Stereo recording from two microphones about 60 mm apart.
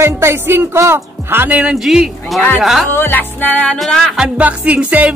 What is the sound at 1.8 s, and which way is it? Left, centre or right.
Speech, centre.